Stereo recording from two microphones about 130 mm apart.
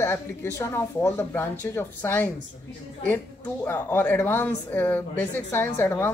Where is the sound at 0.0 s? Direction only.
20° left (ahead or behind).